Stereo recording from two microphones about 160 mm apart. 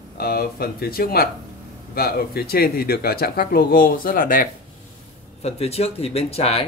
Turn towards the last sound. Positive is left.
turn(degrees=40)  # may be behind; listen again after turning